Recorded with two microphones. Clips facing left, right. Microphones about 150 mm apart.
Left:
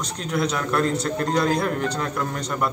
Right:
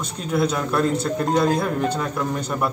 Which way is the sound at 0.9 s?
20° right (ahead or behind).